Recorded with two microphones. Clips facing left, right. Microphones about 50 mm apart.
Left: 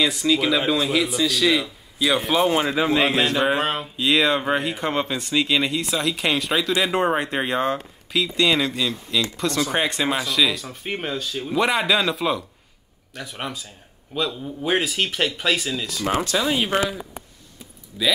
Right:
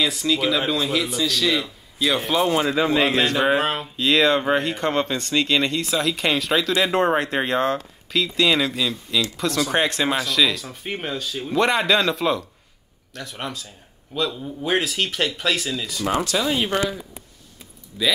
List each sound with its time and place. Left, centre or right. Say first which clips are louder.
0.0 s speech: left 1 dB; centre
16.7 s speech: left 2 dB; left
17.9 s speech: even; centre